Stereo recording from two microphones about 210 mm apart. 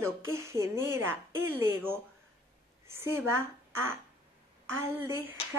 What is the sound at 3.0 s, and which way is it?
Speech, 10° right (ahead or behind).